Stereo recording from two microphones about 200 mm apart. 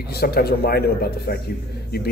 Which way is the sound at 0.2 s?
50° left (ahead or behind).